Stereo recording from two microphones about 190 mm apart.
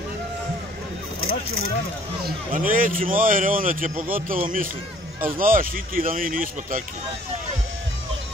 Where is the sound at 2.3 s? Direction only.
45° right (ahead or behind).